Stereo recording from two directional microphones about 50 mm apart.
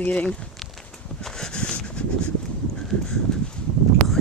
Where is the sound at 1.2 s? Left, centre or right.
Centre.